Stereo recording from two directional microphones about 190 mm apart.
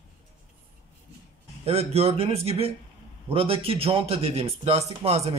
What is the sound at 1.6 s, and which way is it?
A man's voice, 35° right (ahead or behind).